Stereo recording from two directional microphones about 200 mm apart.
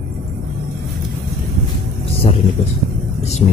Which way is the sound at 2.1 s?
30° left (ahead or behind).